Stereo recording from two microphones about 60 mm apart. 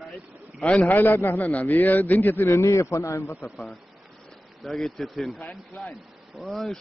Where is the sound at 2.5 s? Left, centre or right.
Left.